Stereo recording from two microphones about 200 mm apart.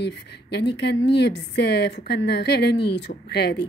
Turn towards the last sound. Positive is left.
turn(degrees=55)  # may be behind; listen again after turning